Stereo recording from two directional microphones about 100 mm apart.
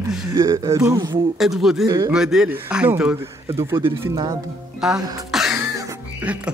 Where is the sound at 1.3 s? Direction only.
5° right (ahead or behind).